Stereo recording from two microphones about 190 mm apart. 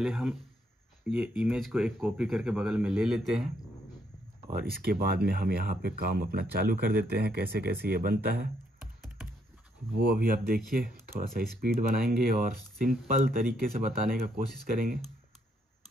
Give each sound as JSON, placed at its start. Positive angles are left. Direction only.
{"t": 0.0, "sound": "speech", "side_deg": 0}
{"t": 4.5, "sound": "speech", "side_deg": -45}
{"t": 9.9, "sound": "speech", "side_deg": -50}